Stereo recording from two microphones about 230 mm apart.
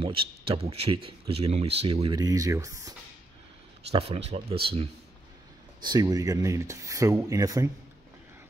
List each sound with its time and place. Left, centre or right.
0.0 s speech: right
3.9 s speech: right
5.8 s speech: centre